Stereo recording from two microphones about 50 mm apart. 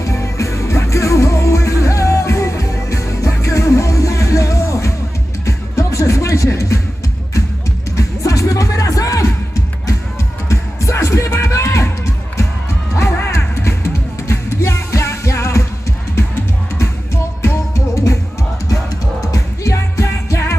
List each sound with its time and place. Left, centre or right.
0.0 s music: left
7.9 s music: left
10.5 s music: left
12.9 s music: left
17.4 s music: left
19.3 s music: left